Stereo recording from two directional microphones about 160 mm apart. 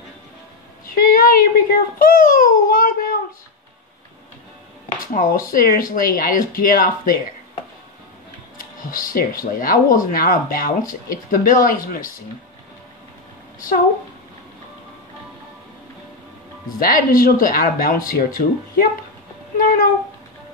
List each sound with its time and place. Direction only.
0.8 s a child's voice: 60° left (ahead or behind)
5.0 s speech: 60° left (ahead or behind)
8.5 s speech: 60° left (ahead or behind)
16.8 s speech: 60° left (ahead or behind)